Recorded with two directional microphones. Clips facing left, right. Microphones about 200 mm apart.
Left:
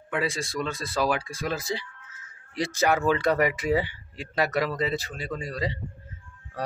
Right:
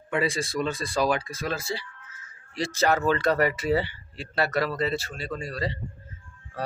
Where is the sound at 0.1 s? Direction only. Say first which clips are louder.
Right 2 dB; centre (ahead or behind).